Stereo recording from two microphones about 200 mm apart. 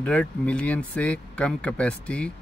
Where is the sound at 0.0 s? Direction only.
5° left (ahead or behind).